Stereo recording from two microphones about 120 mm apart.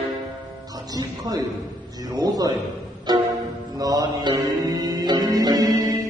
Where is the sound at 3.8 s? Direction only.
30° right (ahead or behind).